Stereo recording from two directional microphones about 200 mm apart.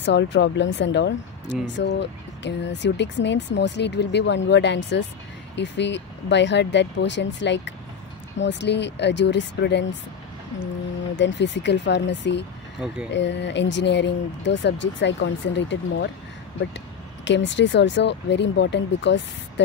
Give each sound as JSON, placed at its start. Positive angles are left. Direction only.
{"t": 0.0, "sound": "speech", "side_deg": 60}
{"t": 11.1, "sound": "speech", "side_deg": 65}
{"t": 12.7, "sound": "speech", "side_deg": -5}
{"t": 13.1, "sound": "speech", "side_deg": 60}
{"t": 17.2, "sound": "speech", "side_deg": 65}